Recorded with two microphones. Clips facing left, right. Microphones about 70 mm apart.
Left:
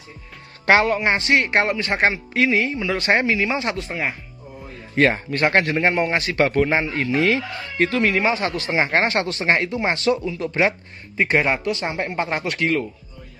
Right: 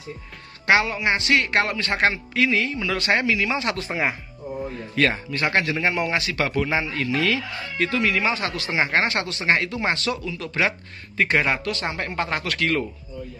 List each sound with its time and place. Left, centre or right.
0.7 s a man's voice: left
3.7 s speech: centre
4.9 s a man's voice: left
8.2 s a man's voice: left